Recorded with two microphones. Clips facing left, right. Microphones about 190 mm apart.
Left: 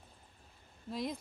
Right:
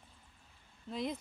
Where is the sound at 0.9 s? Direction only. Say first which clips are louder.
Even; centre (ahead or behind).